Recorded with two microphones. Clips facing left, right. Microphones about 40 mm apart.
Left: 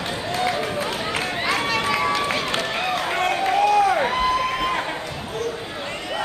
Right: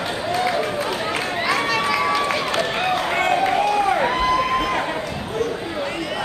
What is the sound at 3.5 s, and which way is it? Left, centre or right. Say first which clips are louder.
Run: left 1 dB; centre.